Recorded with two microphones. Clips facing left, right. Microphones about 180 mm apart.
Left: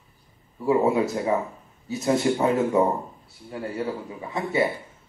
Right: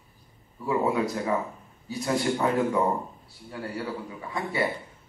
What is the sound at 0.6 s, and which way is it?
Speech, 25° left (ahead or behind).